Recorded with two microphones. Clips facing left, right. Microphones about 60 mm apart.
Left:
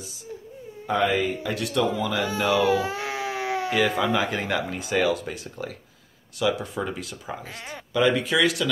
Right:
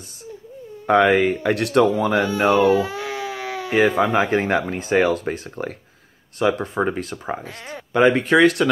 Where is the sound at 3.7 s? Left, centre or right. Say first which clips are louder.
Right 7 dB; right.